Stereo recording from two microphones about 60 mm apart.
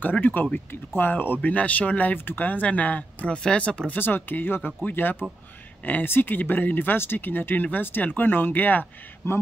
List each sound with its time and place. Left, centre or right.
0.0 s speech: left
9.2 s speech: left